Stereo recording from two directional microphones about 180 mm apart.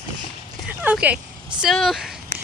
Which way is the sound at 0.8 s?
10° right (ahead or behind).